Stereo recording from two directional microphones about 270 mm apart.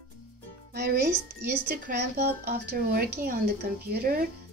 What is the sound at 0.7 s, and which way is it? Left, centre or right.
A child's voice, right.